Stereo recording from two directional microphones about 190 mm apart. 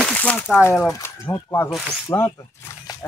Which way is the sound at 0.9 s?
15° left (ahead or behind).